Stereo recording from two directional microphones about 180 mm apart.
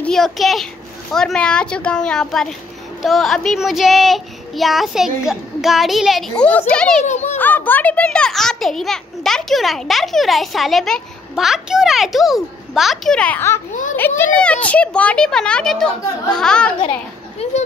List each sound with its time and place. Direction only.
0.0 s a child's voice: centre (ahead or behind)
7.0 s a child's voice: 40° left (ahead or behind)
7.3 s a child's voice: 10° left (ahead or behind)
17.4 s speech: 35° left (ahead or behind)